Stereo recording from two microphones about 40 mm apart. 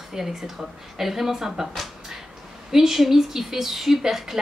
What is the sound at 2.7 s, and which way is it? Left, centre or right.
A woman's voice, centre.